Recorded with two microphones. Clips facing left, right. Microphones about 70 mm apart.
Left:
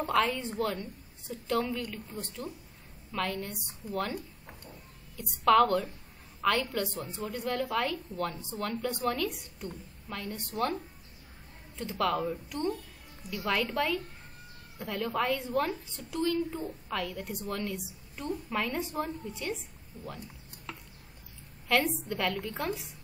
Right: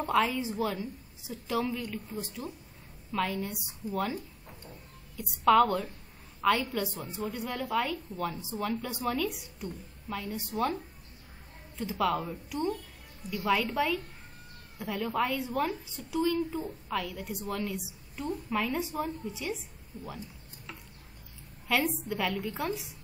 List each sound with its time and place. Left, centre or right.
0.0 s a woman's voice: centre
21.6 s a woman's voice: centre